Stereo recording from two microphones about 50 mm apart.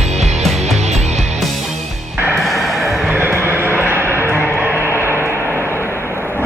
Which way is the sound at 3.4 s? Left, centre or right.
Right.